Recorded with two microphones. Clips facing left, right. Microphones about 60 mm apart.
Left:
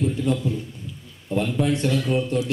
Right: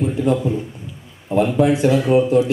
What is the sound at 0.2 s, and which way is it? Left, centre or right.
Speech, right.